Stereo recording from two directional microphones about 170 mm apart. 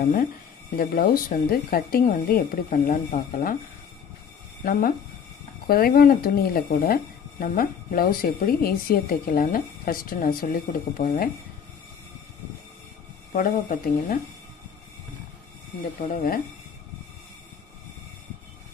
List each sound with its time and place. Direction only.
0.7 s speech: 60° left (ahead or behind)
2.9 s speech: 50° left (ahead or behind)
4.6 s speech: 55° left (ahead or behind)
13.3 s speech: 55° left (ahead or behind)
16.0 s speech: 55° left (ahead or behind)